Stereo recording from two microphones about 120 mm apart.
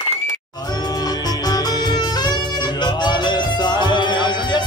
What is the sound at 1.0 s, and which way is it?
Music, 35° left (ahead or behind).